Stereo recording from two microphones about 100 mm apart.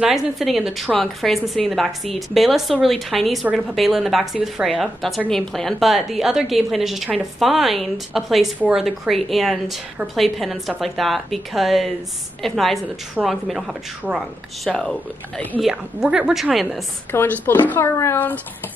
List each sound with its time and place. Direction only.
0.0 s a woman's voice: 5° right (ahead or behind)
15.6 s a woman's voice: 5° right (ahead or behind)
17.1 s speech: 20° left (ahead or behind)